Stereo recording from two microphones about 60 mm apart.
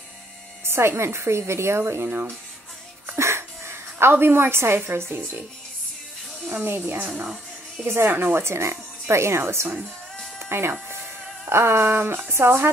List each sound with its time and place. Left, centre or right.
0.7 s speech: right
2.0 s a woman's voice: right
3.1 s a sound: right
4.7 s a woman's voice: right
6.6 s a woman's voice: right
7.1 s speech: centre
7.8 s speech: right
10.4 s a sound: right
11.4 s speech: right